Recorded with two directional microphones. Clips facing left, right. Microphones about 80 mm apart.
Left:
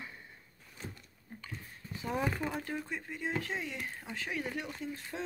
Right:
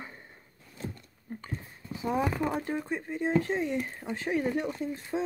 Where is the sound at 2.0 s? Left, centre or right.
Right.